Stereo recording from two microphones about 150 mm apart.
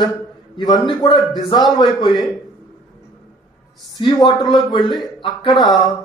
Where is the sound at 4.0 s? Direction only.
25° left (ahead or behind).